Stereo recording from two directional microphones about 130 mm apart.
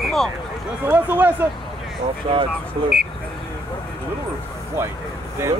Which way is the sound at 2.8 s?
40° right (ahead or behind).